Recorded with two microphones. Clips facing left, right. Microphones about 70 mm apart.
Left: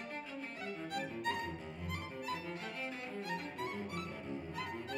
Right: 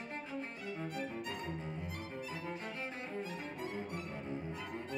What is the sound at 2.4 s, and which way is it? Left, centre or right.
Music, centre.